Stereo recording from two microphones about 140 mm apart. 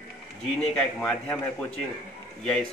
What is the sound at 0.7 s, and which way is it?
Speech, 5° left (ahead or behind).